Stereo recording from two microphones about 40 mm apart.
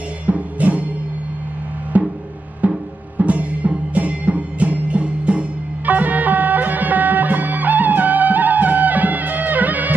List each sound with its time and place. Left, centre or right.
0.3 s music: right
1.9 s music: right